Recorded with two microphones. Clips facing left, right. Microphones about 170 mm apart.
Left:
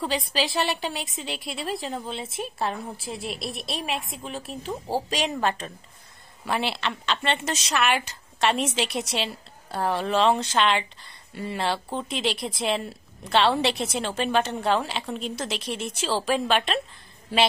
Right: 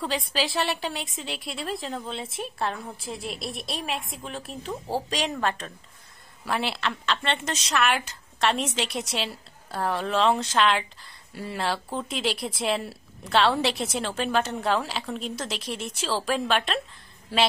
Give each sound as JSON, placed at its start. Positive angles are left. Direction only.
{"t": 0.0, "sound": "a woman's voice", "side_deg": 0}